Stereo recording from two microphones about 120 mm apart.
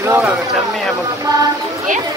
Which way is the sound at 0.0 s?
20° right (ahead or behind).